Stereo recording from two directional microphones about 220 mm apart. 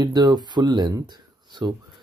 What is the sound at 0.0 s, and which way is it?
Speech, 20° right (ahead or behind).